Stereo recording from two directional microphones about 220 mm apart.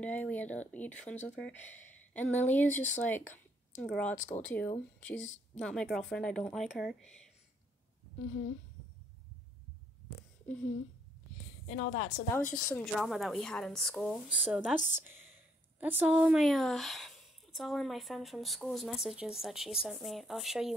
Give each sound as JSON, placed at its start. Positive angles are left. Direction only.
{"t": 0.0, "sound": "speech", "side_deg": 5}
{"t": 11.7, "sound": "a woman's voice", "side_deg": 35}
{"t": 12.6, "sound": "speech", "side_deg": 0}